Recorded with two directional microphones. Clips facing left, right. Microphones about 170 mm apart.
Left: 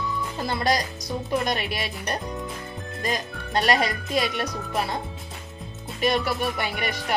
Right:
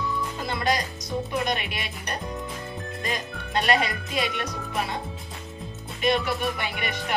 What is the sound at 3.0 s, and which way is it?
Speech, 40° left (ahead or behind).